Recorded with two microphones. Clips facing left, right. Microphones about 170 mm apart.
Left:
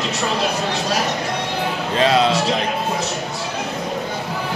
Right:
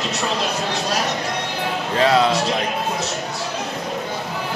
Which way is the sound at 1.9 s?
20° left (ahead or behind).